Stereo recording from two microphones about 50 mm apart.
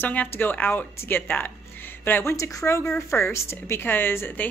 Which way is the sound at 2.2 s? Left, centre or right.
Left.